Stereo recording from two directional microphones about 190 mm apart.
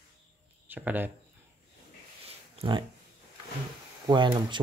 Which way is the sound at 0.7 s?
10° right (ahead or behind).